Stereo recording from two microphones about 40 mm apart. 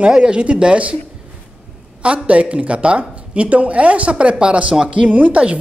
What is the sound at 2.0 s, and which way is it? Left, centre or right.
A woman's voice, right.